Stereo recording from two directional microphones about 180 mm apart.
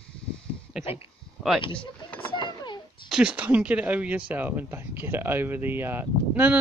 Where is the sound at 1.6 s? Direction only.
30° left (ahead or behind).